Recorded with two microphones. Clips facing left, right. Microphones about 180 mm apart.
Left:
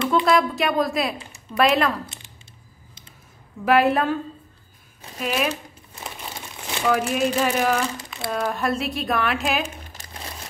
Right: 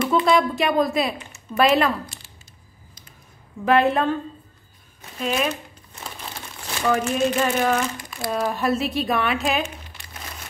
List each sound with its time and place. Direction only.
0.1 s speech: centre (ahead or behind)
3.6 s speech: 5° left (ahead or behind)
5.2 s speech: 5° left (ahead or behind)
6.8 s speech: 5° left (ahead or behind)
8.0 s crumpling: 25° left (ahead or behind)
8.3 s speech: centre (ahead or behind)
9.8 s crumpling: 40° left (ahead or behind)